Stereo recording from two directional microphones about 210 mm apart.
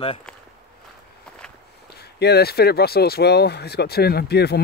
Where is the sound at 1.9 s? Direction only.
50° left (ahead or behind).